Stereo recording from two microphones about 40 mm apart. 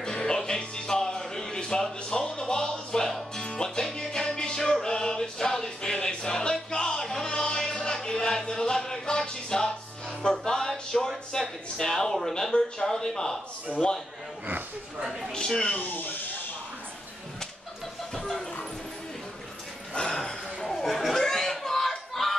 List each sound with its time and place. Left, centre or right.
0.0 s music: left
10.9 s a sound: centre
11.7 s a man's voice: centre
13.7 s a man's voice: left
15.8 s speech: left
18.1 s vehicle: centre
19.9 s speech: left
20.2 s a sound: centre